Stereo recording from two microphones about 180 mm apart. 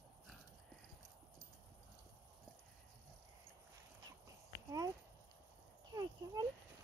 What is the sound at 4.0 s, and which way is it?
Horse, 20° right (ahead or behind).